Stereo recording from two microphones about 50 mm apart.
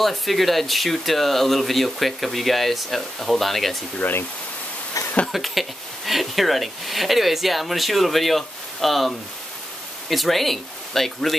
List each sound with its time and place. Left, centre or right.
0.0 s a woman's voice: centre
5.0 s a sound: left
5.3 s a woman's voice: centre